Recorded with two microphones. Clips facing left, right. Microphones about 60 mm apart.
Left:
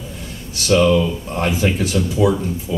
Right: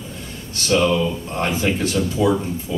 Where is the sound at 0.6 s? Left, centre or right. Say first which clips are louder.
Left 3 dB; centre.